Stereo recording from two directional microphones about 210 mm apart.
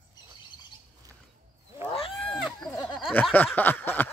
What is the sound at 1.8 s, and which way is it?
Wild animals, 25° left (ahead or behind).